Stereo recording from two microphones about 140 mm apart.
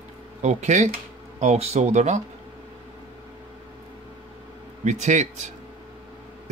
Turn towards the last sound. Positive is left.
turn(degrees=-60)  # may be behind; listen again after turning